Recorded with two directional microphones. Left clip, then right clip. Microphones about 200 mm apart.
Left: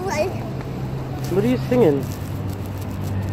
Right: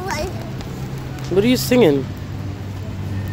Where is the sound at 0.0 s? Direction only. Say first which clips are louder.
Left 2 dB; 15° right (ahead or behind).